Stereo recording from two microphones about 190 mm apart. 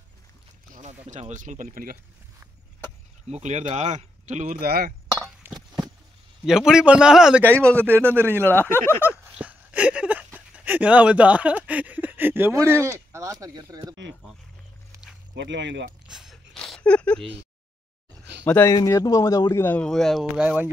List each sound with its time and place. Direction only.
0.7 s speech: 40° right (ahead or behind)
3.3 s speech: 35° right (ahead or behind); by 4.9 s 50° right (ahead or behind)
6.4 s a man's voice: 5° right (ahead or behind)
7.5 s a man's voice: 5° left (ahead or behind)
7.8 s a man's voice: 10° right (ahead or behind)
8.5 s a man's voice: 10° left (ahead or behind)
9.1 s a sound: 5° right (ahead or behind)
10.5 s speech: 10° right (ahead or behind)
15.3 s speech: 70° right (ahead or behind)
16.1 s a sound: centre (ahead or behind)
18.4 s a man's voice: 10° left (ahead or behind); by 20.7 s 10° right (ahead or behind)